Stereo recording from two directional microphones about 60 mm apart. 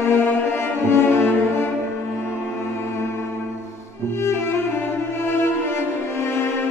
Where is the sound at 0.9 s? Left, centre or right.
Left.